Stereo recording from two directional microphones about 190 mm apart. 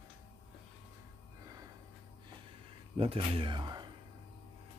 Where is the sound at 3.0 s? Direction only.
30° right (ahead or behind).